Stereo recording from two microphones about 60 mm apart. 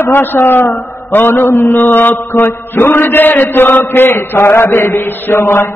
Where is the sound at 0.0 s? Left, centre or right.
Left.